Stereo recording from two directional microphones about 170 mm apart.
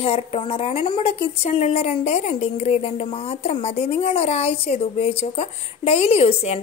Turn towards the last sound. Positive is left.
turn(degrees=35)  # may be behind; listen again after turning